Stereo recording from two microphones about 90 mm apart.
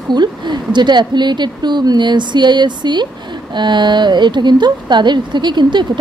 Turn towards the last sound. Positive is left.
turn(degrees=-55)  # may be behind; listen again after turning